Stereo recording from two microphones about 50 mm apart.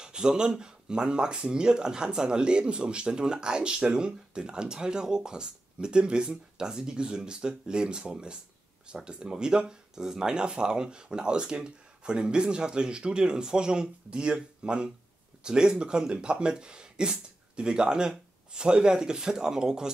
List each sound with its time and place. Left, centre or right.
0.0 s speech: centre